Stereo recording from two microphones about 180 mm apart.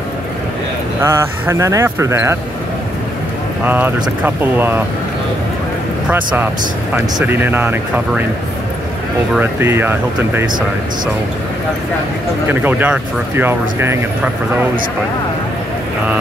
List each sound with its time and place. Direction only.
1.0 s speech: 15° right (ahead or behind)
3.6 s speech: 10° right (ahead or behind)
6.0 s speech: 10° right (ahead or behind)
9.3 s speech: 10° right (ahead or behind)
12.4 s speech: 10° right (ahead or behind)